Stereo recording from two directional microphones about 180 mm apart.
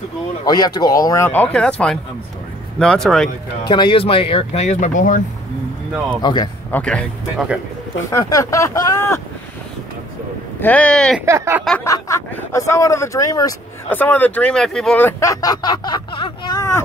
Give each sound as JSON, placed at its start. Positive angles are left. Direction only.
{"t": 0.5, "sound": "speech", "side_deg": 20}
{"t": 3.6, "sound": "speech", "side_deg": 25}
{"t": 6.2, "sound": "speech", "side_deg": 25}
{"t": 6.7, "sound": "speech", "side_deg": 5}
{"t": 8.1, "sound": "speech", "side_deg": 20}
{"t": 10.6, "sound": "speech", "side_deg": 10}
{"t": 11.1, "sound": "speech", "side_deg": -15}
{"t": 11.8, "sound": "speech", "side_deg": 15}
{"t": 13.8, "sound": "speech", "side_deg": 10}